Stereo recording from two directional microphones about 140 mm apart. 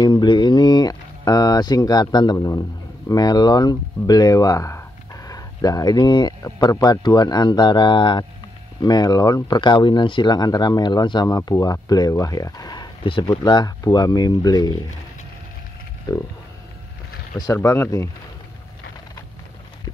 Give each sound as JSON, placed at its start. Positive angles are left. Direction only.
{"t": 0.0, "sound": "a sound", "side_deg": 30}
{"t": 2.3, "sound": "speech", "side_deg": 25}
{"t": 16.1, "sound": "speech", "side_deg": 30}
{"t": 17.6, "sound": "speech", "side_deg": 20}